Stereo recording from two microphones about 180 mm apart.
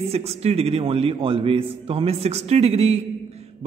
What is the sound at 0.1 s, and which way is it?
A man's voice, 35° right (ahead or behind).